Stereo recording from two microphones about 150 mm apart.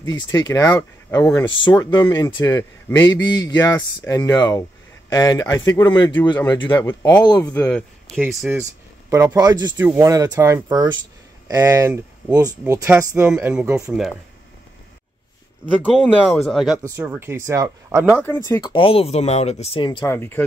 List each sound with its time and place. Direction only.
0.1 s speech: 25° left (ahead or behind)
1.6 s speech: 30° left (ahead or behind)
3.7 s speech: 15° left (ahead or behind); by 6.9 s 30° left (ahead or behind)
6.9 s speech: 15° left (ahead or behind)
7.5 s speech: 5° left (ahead or behind)
9.1 s speech: 15° right (ahead or behind)
9.4 s speech: 25° right (ahead or behind); by 13.8 s 10° right (ahead or behind)
15.8 s speech: centre (ahead or behind)
16.9 s speech: 15° right (ahead or behind)
18.2 s speech: 15° left (ahead or behind)
18.6 s speech: 35° left (ahead or behind)
20.1 s speech: 15° left (ahead or behind)